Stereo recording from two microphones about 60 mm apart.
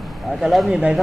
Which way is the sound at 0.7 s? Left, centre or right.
Centre.